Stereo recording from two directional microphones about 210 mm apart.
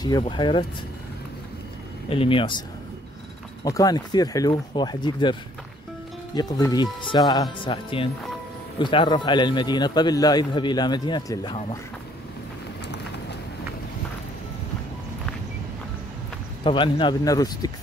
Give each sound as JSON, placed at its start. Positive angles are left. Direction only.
{"t": 0.0, "sound": "speech", "side_deg": 20}
{"t": 2.0, "sound": "speech", "side_deg": 25}
{"t": 3.6, "sound": "speech", "side_deg": 15}
{"t": 12.8, "sound": "vehicle", "side_deg": 55}
{"t": 16.6, "sound": "speech", "side_deg": 25}